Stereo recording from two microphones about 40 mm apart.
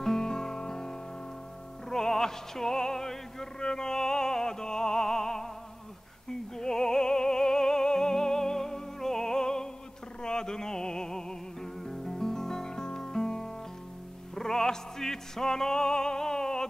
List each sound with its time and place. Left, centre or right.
0.0 s music: centre
6.5 s music: centre